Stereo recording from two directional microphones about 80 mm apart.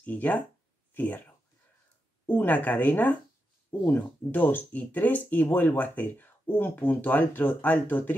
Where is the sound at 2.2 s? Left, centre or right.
Left.